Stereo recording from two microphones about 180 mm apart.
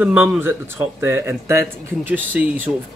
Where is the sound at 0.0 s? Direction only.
10° right (ahead or behind).